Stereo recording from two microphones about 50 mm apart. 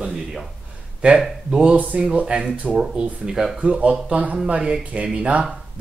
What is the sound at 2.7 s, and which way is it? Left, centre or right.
Speech, centre.